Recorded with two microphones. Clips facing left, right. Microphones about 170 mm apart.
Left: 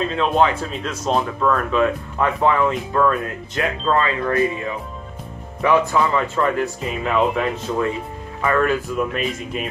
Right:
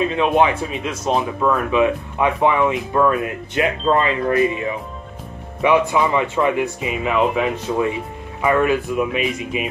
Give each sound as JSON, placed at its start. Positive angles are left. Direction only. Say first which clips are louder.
{"t": 0.0, "sound": "speech", "louder": "right 2 dB", "side_deg": -10}
{"t": 3.9, "sound": "speech", "louder": "right 2 dB", "side_deg": -25}
{"t": 5.6, "sound": "speech", "louder": "right 1 dB", "side_deg": -15}